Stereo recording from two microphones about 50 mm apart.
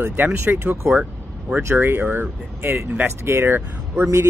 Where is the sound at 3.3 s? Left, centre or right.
Right.